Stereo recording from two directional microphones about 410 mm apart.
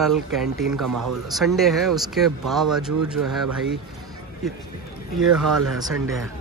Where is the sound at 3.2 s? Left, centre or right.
Right.